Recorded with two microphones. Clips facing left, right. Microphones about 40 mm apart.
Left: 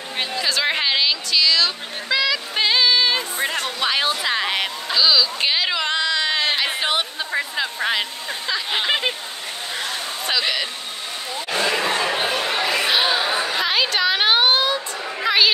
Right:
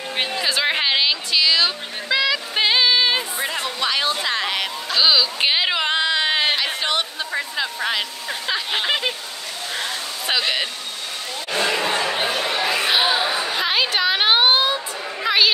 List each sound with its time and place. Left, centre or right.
0.2 s speech: centre
3.6 s speech: centre
4.9 s speech: centre
6.5 s speech: centre
12.0 s chatter: centre
13.3 s chatter: centre
13.7 s a sound: centre
15.2 s a sound: centre